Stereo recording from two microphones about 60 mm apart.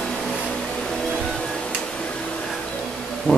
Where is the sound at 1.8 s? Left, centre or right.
Centre.